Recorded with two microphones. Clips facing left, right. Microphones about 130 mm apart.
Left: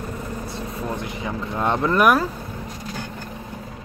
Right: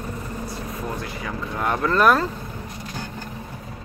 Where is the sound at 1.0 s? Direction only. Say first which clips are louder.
Left 2 dB; 20° left (ahead or behind).